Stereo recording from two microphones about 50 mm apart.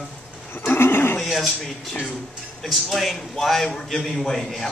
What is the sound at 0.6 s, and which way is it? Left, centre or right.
Speech, left.